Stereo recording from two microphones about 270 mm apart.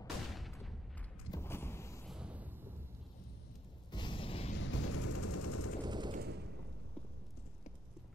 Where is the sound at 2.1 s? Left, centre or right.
Centre.